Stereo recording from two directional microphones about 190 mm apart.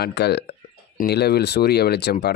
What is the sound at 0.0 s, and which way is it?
Speech, 60° left (ahead or behind).